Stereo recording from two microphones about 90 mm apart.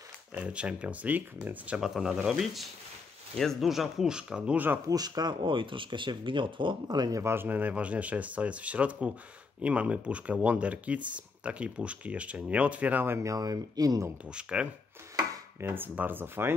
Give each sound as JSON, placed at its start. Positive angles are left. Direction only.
{"t": 0.3, "sound": "speech", "side_deg": -15}
{"t": 1.8, "sound": "speech", "side_deg": -5}
{"t": 4.8, "sound": "speech", "side_deg": -45}
{"t": 7.2, "sound": "speech", "side_deg": -25}
{"t": 13.3, "sound": "speech", "side_deg": -45}
{"t": 14.3, "sound": "speech", "side_deg": -10}
{"t": 15.6, "sound": "speech", "side_deg": -25}